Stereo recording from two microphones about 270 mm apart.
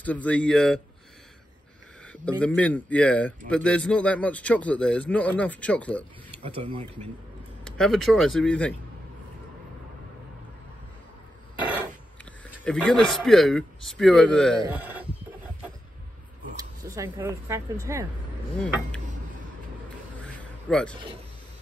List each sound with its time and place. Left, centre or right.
0.0 s speech: centre
2.2 s speech: centre
6.4 s speech: centre
7.7 s speech: centre
11.6 s a sound: centre
12.6 s speech: centre
16.5 s speech: centre
20.3 s a sound: centre